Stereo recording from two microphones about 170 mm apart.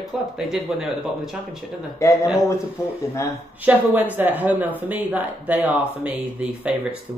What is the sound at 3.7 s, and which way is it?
Speech, 10° right (ahead or behind).